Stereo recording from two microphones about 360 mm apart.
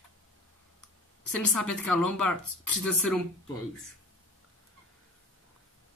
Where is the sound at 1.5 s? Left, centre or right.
Centre.